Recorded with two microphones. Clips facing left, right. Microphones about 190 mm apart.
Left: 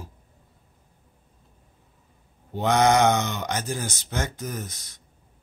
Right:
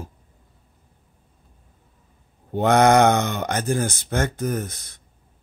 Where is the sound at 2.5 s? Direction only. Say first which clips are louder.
Right 4 dB; 55° right (ahead or behind).